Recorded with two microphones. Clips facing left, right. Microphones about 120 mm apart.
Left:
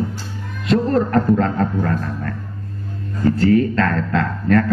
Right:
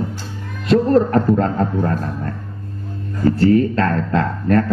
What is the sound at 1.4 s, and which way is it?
Speech, 30° right (ahead or behind).